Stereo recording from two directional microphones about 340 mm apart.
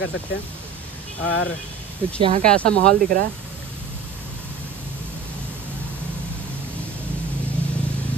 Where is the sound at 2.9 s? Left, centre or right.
Right.